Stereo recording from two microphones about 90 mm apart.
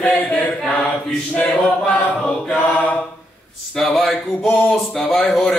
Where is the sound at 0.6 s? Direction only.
10° left (ahead or behind).